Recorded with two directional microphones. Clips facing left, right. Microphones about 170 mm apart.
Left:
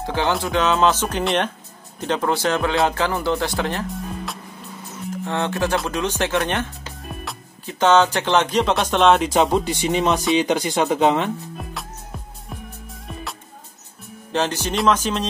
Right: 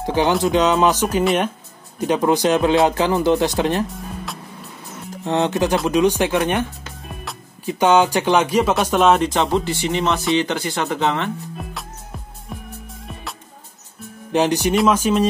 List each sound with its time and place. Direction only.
0.0 s speech: 15° right (ahead or behind)
5.2 s speech: 20° right (ahead or behind); by 9.3 s centre (ahead or behind)
9.3 s speech: 15° left (ahead or behind)
11.5 s music: centre (ahead or behind)
14.3 s speech: 15° right (ahead or behind)